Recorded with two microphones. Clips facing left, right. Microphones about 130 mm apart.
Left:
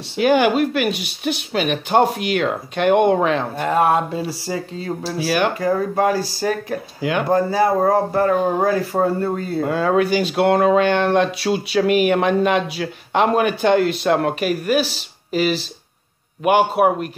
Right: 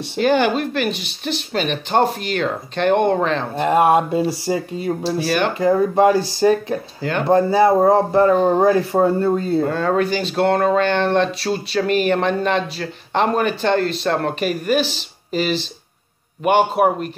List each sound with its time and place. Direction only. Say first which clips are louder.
0.2 s speech: left 2 dB; 10° left (ahead or behind)
3.5 s speech: right 5 dB; 20° right (ahead or behind)
5.0 s a man's voice: left 1 dB; 5° left (ahead or behind)
5.6 s speech: right 4 dB; 20° right (ahead or behind)
7.0 s speech: left 3 dB; 10° left (ahead or behind)
7.2 s speech: right 4 dB; 25° right (ahead or behind)
9.6 s a man's voice: even; 10° left (ahead or behind)